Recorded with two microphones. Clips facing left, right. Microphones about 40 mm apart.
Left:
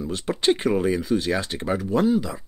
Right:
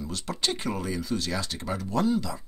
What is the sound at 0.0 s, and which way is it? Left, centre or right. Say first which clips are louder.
Speech: left 8 dB; left.